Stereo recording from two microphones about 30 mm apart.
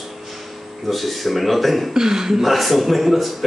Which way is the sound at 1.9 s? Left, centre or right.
Centre.